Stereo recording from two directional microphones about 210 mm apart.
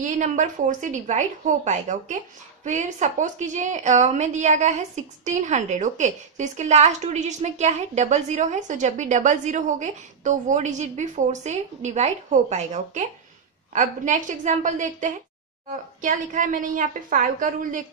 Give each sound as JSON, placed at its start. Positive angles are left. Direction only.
{"t": 0.0, "sound": "a woman's voice", "side_deg": -35}